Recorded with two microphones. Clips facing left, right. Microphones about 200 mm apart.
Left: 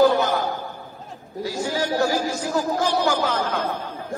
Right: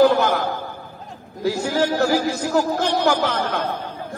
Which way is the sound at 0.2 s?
60° right (ahead or behind).